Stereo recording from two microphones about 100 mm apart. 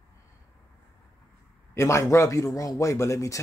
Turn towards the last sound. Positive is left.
turn(degrees=30)  # may be behind; listen again after turning